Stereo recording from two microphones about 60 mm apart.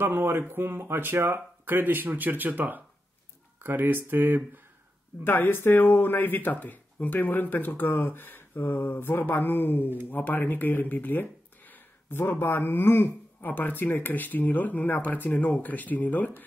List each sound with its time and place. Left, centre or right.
0.0 s speech: right
5.2 s speech: left